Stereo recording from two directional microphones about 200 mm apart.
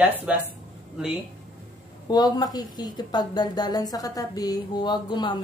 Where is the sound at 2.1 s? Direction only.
20° left (ahead or behind).